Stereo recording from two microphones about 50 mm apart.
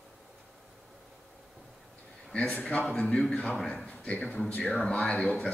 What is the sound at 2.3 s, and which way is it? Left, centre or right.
A man's voice, left.